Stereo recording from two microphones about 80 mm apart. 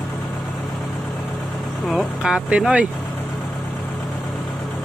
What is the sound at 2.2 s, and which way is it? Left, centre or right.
Speech, centre.